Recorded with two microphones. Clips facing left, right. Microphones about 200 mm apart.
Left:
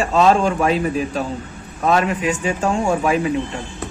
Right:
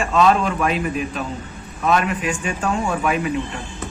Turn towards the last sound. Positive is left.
turn(degrees=30)  # may be behind; listen again after turning